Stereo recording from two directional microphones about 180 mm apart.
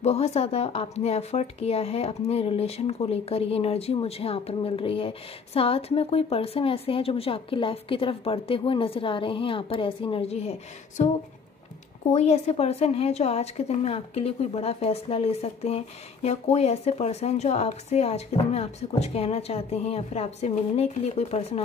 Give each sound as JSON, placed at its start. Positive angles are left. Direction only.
{"t": 0.0, "sound": "speech", "side_deg": 35}
{"t": 12.1, "sound": "speech", "side_deg": 40}